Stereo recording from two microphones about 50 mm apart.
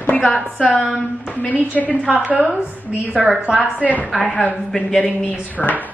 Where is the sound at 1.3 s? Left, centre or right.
Left.